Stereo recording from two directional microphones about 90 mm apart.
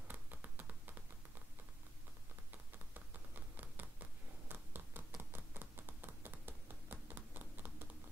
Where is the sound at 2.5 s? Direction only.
20° right (ahead or behind).